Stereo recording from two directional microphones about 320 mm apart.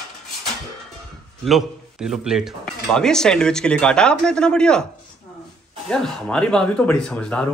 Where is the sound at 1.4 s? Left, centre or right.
Centre.